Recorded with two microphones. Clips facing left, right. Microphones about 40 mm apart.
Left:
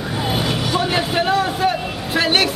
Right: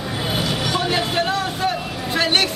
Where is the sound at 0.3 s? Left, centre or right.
Centre.